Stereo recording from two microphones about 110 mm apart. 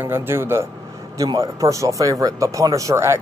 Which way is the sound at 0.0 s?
20° right (ahead or behind).